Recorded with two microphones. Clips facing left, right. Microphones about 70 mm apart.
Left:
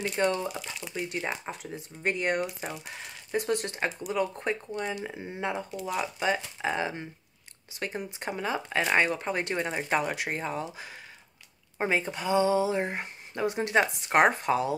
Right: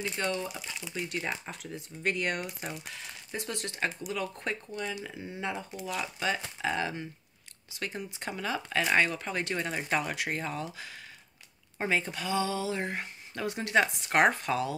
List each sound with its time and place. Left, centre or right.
0.2 s speech: left
0.9 s speech: centre
2.9 s speech: left
5.9 s speech: centre
8.2 s speech: left